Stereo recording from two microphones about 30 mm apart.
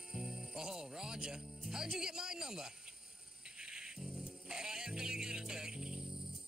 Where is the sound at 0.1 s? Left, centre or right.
Centre.